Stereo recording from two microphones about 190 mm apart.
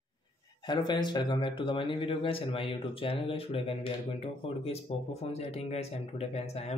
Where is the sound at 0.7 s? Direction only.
25° left (ahead or behind).